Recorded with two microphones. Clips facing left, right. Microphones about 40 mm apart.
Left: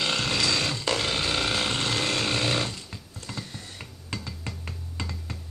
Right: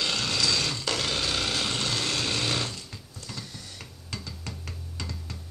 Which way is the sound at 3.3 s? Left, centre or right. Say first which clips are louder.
Left 3 dB; left.